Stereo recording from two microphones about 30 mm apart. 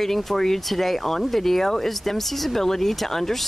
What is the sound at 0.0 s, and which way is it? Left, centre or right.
Speech, centre.